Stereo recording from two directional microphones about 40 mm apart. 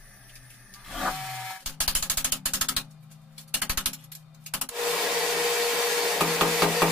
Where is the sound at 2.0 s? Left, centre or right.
Right.